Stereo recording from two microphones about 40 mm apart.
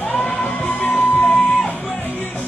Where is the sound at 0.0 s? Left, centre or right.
Left.